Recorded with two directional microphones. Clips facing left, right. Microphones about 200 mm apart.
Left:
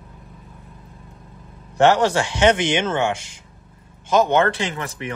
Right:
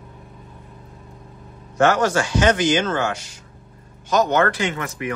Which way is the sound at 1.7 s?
30° left (ahead or behind).